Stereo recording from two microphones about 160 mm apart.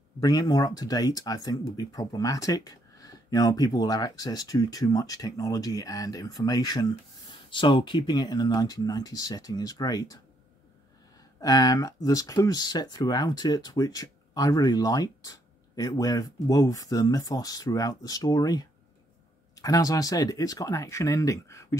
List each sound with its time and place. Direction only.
0.2 s speech: 25° left (ahead or behind)
11.4 s speech: 25° left (ahead or behind)